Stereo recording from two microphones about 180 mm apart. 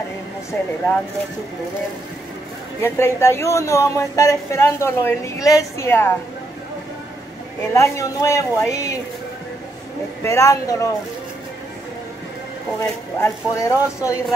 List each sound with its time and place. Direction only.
2.8 s speech: 15° left (ahead or behind)
7.7 s speech: 15° left (ahead or behind)
10.2 s speech: 15° left (ahead or behind)
13.2 s speech: 15° left (ahead or behind)